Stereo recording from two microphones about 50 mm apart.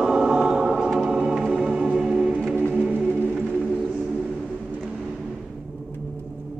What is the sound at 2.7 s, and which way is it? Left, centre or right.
Music, right.